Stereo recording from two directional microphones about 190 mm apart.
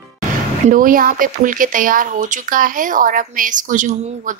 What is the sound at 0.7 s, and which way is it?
Speech, 45° right (ahead or behind).